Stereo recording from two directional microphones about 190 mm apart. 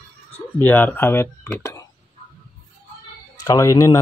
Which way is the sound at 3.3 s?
20° left (ahead or behind).